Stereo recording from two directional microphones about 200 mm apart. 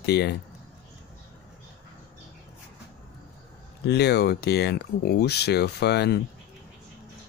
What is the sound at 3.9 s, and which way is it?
Speech, 55° left (ahead or behind).